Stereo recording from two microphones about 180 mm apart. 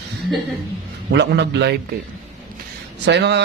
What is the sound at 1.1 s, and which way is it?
Speech, 75° right (ahead or behind).